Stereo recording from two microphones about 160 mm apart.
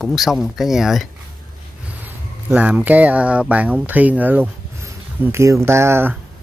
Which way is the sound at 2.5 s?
10° right (ahead or behind).